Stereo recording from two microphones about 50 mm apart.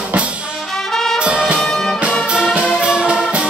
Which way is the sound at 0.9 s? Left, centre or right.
Centre.